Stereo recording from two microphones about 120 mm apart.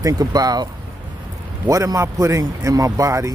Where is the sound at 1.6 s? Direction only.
30° right (ahead or behind).